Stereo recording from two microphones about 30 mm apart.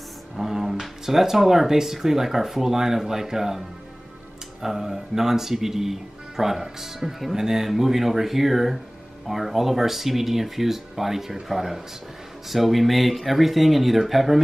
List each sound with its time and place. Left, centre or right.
0.4 s speech: centre
7.3 s speech: centre
7.7 s speech: centre